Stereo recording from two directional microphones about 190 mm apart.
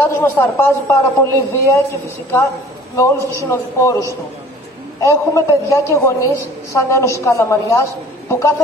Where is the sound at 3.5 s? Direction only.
15° left (ahead or behind).